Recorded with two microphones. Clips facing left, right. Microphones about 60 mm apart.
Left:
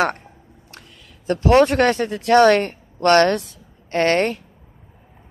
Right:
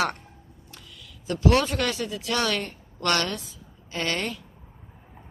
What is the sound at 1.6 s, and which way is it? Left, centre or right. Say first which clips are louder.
Speech: left 11 dB; left.